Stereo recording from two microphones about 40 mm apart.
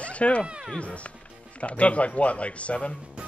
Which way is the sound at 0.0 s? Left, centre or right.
Left.